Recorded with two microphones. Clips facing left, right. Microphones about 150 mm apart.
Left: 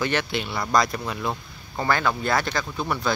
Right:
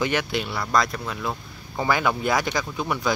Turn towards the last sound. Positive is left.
turn(degrees=-15)  # may be behind; listen again after turning